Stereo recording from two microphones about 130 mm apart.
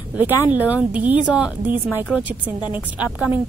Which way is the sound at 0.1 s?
15° right (ahead or behind).